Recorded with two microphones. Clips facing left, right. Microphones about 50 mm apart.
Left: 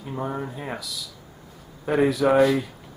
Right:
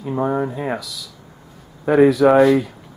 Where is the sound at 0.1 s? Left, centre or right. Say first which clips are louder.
Right 9 dB; right.